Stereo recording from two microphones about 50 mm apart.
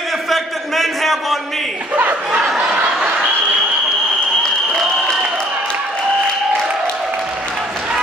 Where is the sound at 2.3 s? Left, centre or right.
Centre.